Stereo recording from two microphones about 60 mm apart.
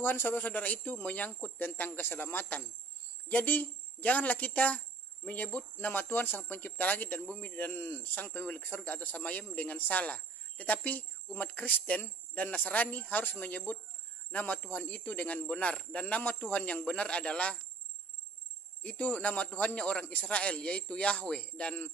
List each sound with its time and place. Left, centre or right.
0.0 s speech: left; by 17.6 s centre
18.8 s speech: left